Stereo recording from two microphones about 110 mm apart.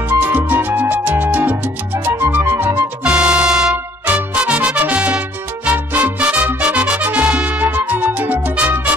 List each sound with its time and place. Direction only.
0.1 s music: 15° right (ahead or behind)